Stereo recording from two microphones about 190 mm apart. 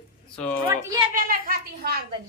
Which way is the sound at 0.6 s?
15° right (ahead or behind).